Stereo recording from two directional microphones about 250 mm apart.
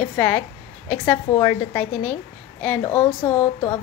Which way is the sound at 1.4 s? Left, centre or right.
Centre.